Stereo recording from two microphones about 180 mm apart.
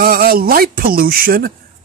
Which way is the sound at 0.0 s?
55° right (ahead or behind).